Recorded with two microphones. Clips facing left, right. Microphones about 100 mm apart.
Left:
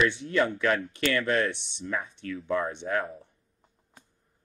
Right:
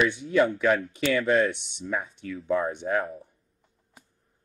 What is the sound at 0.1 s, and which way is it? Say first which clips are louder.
Speech: right 4 dB; 10° right (ahead or behind).